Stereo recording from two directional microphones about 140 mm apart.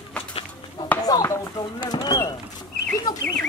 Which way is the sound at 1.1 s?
25° left (ahead or behind).